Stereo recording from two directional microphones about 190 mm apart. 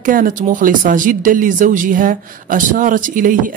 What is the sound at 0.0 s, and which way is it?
Speech, 45° right (ahead or behind).